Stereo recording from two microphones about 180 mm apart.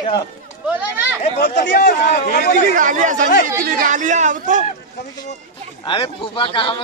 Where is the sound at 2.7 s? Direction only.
45° right (ahead or behind).